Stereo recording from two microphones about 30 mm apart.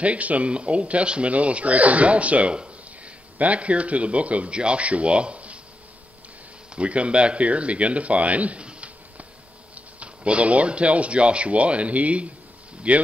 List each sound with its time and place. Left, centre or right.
0.0 s speech: right
0.5 s speech: right
6.7 s speech: right
9.9 s speech: right